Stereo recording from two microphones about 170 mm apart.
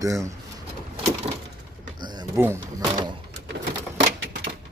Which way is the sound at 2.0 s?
25° right (ahead or behind).